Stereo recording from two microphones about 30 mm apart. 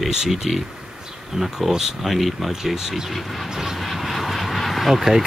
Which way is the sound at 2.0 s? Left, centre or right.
Centre.